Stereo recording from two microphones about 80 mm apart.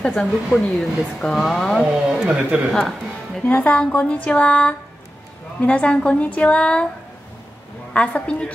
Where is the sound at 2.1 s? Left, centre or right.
Centre.